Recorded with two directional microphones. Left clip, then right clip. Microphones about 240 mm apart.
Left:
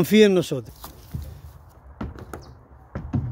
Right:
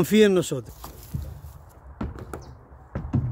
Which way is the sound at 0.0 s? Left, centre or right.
Centre.